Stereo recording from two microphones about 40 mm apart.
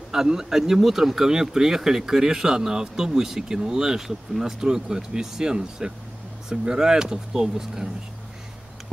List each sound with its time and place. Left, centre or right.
0.1 s speech: centre